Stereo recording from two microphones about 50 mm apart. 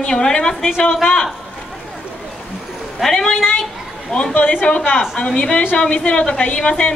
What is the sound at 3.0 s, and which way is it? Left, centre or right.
Speech, centre.